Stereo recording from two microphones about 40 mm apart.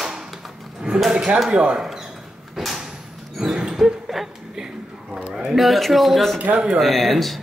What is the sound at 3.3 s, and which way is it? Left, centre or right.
Dog, centre.